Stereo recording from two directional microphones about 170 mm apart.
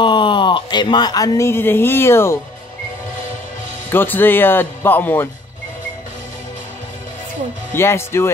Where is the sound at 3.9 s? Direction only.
10° left (ahead or behind).